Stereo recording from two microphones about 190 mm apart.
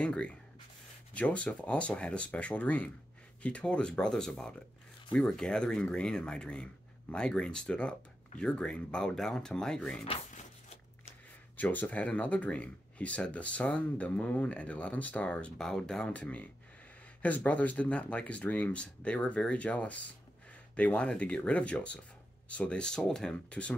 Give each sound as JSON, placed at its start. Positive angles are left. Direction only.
{"t": 0.0, "sound": "speech", "side_deg": 5}
{"t": 10.0, "sound": "a sound", "side_deg": 35}
{"t": 11.5, "sound": "speech", "side_deg": 10}